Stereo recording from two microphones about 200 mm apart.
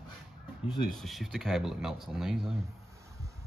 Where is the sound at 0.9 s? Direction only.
Centre (ahead or behind).